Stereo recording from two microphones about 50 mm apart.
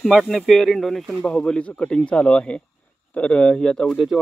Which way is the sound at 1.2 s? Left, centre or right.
Centre.